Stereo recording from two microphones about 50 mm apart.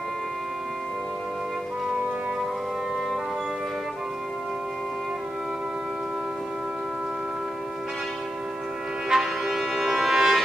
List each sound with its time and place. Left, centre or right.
9.1 s music: centre